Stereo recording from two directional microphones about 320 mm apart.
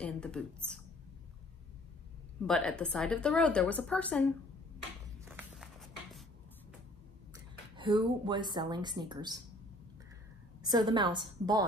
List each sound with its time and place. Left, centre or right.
0.0 s a woman's voice: centre
2.4 s a woman's voice: centre
5.2 s a sound: centre
7.7 s speech: centre
10.6 s speech: centre